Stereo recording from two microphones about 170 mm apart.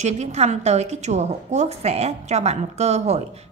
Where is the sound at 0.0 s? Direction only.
40° right (ahead or behind).